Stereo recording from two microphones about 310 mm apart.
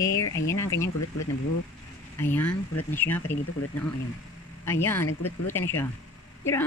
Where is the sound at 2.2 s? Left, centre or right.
Centre.